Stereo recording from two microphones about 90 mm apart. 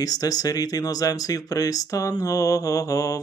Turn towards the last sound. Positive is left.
turn(degrees=40)  # may be behind; listen again after turning